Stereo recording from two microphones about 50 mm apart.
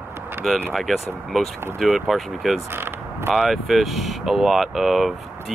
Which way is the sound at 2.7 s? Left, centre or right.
Right.